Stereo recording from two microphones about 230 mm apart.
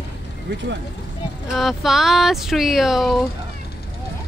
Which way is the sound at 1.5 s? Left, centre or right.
Centre.